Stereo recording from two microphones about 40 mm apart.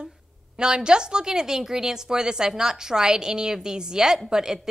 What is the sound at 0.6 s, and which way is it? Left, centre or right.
A woman's voice, right.